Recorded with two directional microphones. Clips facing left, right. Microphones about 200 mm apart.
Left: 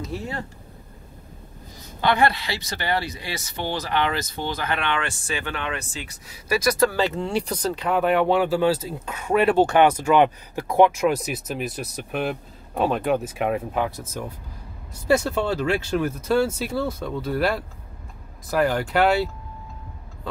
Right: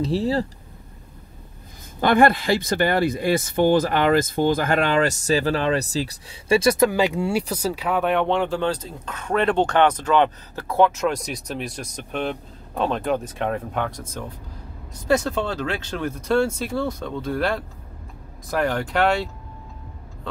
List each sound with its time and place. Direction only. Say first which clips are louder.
0.0 s speech: right 9 dB; 30° right (ahead or behind)
2.0 s speech: right 4 dB; 50° right (ahead or behind); by 6.9 s 25° right (ahead or behind)
6.9 s speech: right 3 dB; 15° right (ahead or behind); by 14.0 s 5° left (ahead or behind)
15.0 s speech: left 1 dB; 10° left (ahead or behind)